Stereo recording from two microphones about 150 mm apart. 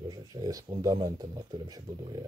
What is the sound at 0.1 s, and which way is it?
Speech, 25° right (ahead or behind).